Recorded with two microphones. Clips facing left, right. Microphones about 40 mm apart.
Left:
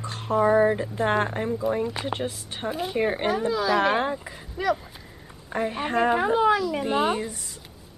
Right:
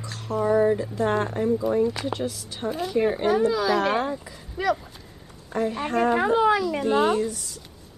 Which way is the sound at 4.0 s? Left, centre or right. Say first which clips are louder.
Left 1 dB; left.